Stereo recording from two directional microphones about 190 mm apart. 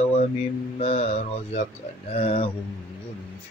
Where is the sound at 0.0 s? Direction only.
35° left (ahead or behind).